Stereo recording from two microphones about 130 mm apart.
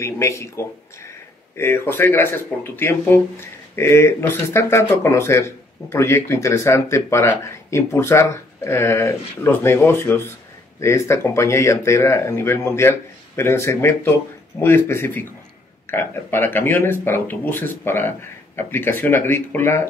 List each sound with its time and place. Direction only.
0.0 s speech: 20° left (ahead or behind)